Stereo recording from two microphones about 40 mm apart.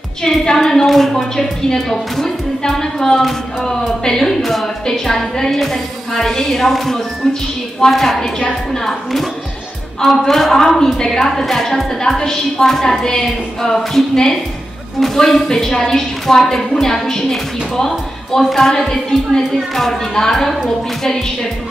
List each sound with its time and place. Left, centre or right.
0.2 s a woman's voice: centre
7.2 s a woman's voice: centre